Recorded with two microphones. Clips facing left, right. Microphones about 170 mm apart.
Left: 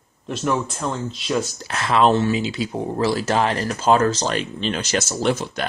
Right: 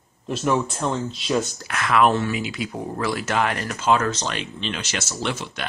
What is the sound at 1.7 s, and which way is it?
Speech, 30° left (ahead or behind).